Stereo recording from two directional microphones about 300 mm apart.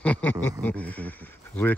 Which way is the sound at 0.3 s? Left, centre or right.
Left.